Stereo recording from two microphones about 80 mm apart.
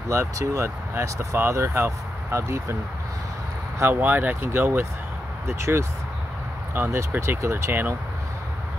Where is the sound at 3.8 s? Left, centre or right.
Right.